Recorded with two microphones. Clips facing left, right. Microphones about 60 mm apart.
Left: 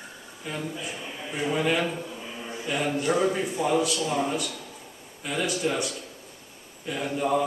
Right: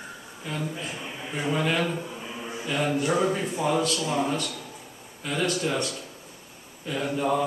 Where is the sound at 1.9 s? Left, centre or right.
Centre.